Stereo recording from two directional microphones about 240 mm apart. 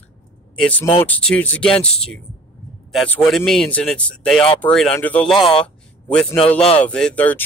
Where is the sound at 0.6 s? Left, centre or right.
Centre.